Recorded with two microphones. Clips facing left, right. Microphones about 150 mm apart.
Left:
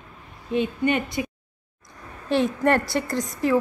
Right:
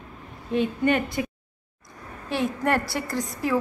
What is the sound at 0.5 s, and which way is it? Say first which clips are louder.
Speech: even; 40° right (ahead or behind).